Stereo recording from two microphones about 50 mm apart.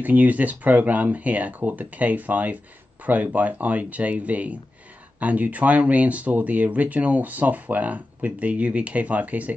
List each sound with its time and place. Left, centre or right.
0.0 s speech: right